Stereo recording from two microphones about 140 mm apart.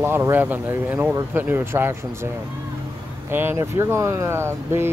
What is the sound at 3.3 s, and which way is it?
Speech, 15° right (ahead or behind).